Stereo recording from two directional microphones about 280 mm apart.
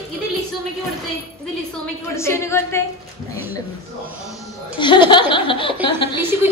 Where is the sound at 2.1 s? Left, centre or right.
Centre.